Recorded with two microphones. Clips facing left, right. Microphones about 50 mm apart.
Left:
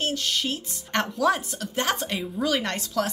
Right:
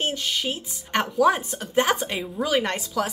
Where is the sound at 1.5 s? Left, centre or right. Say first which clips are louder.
Right 5 dB; right; by 3.1 s centre.